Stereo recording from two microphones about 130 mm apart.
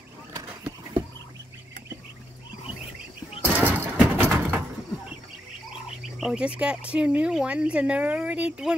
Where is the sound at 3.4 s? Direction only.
15° right (ahead or behind).